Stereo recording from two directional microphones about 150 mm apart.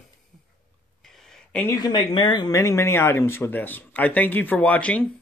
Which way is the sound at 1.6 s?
25° left (ahead or behind).